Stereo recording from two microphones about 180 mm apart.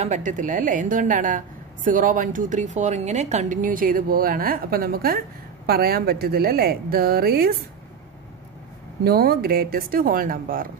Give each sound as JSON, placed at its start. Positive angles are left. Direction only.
{"t": 0.0, "sound": "a woman's voice", "side_deg": -40}
{"t": 9.0, "sound": "a woman's voice", "side_deg": -55}